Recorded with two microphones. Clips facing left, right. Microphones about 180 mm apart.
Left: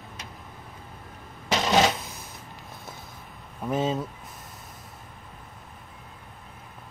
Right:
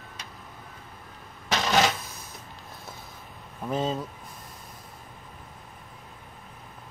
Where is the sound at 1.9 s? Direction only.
Centre (ahead or behind).